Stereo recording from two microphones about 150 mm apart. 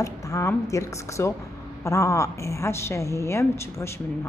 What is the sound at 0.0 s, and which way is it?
A woman's voice, 20° left (ahead or behind).